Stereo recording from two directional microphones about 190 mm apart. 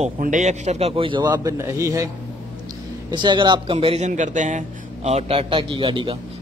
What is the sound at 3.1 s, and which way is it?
A man's voice, 25° right (ahead or behind).